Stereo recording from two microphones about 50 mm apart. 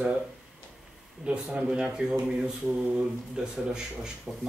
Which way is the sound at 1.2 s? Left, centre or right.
Right.